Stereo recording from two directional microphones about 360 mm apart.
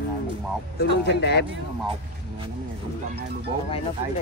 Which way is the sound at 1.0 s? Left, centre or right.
Left.